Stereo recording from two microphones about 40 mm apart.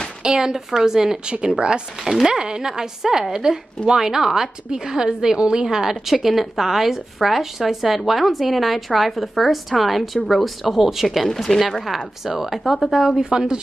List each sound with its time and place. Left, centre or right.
0.2 s a woman's voice: centre
11.2 s speech: centre
11.9 s a woman's voice: centre
13.2 s speech: centre